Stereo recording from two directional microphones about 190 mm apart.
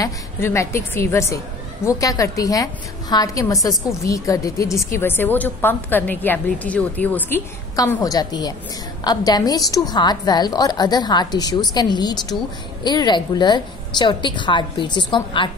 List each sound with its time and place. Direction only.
0.0 s a woman's voice: 15° left (ahead or behind)